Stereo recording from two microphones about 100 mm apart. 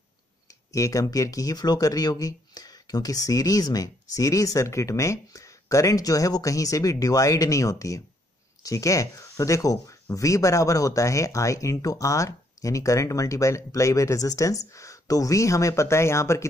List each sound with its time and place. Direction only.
0.7 s speech: 35° left (ahead or behind)